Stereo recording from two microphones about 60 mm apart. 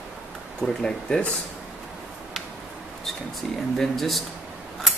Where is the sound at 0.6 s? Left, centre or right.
Centre.